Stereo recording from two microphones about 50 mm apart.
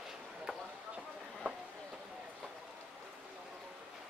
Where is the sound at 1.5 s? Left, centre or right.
Right.